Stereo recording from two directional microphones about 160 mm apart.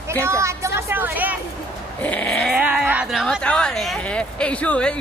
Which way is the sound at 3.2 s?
5° left (ahead or behind).